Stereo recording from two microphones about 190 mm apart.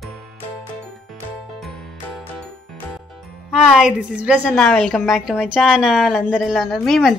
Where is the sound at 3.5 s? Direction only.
Centre (ahead or behind).